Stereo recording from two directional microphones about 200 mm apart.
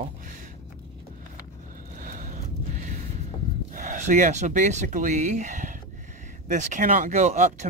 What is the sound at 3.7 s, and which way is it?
Speech, 40° right (ahead or behind).